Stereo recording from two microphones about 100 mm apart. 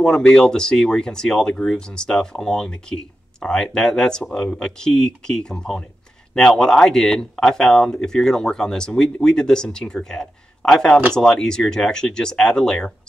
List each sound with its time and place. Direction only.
0.0 s speech: 10° left (ahead or behind)